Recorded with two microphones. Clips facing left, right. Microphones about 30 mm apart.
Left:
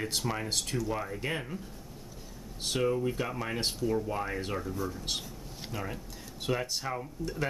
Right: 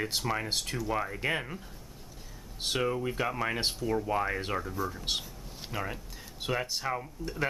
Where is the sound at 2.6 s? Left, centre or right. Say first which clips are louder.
Left 1 dB; centre.